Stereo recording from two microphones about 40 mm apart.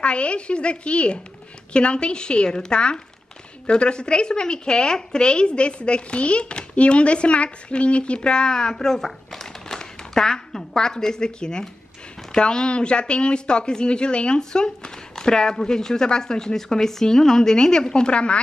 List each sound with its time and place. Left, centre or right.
0.0 s speech: left